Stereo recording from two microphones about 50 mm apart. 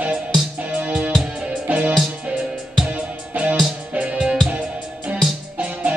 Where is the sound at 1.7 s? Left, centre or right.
Right.